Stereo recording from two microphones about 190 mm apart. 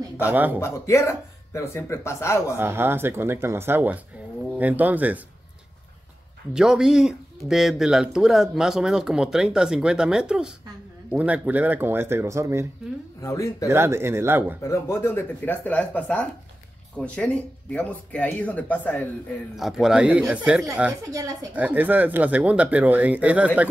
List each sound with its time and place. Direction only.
0.3 s speech: 10° right (ahead or behind)
0.6 s speech: 15° left (ahead or behind)
2.5 s speech: 10° right (ahead or behind)
6.5 s speech: 5° right (ahead or behind)
13.2 s speech: 15° left (ahead or behind)
13.7 s speech: 15° right (ahead or behind)
14.6 s speech: 15° left (ahead or behind); by 23.7 s 5° right (ahead or behind)